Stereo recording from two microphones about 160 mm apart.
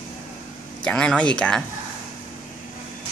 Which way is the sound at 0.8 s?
5° left (ahead or behind).